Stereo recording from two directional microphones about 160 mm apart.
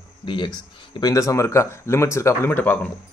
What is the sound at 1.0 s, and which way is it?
Speech, 20° left (ahead or behind).